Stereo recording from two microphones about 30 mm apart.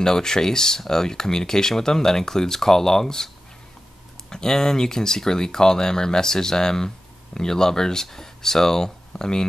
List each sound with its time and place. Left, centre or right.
0.0 s speech: left
4.3 s speech: centre